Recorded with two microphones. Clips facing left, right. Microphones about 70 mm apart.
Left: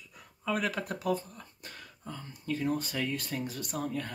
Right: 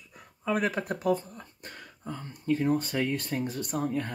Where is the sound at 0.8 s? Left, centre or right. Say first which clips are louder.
Right 4 dB; right.